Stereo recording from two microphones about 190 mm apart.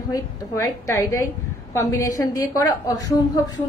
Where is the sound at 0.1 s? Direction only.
15° left (ahead or behind).